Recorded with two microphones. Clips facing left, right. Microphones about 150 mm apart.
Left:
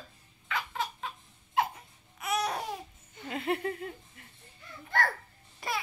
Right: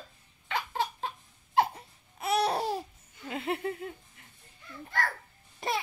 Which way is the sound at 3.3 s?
20° right (ahead or behind).